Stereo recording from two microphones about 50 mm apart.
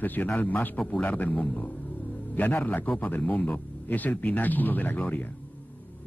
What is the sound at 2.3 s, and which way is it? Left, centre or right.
Speech, left.